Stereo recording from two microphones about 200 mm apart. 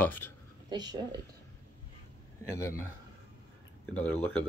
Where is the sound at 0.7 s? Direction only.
20° right (ahead or behind).